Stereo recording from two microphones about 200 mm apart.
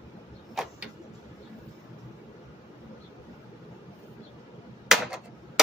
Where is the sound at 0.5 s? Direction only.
Centre (ahead or behind).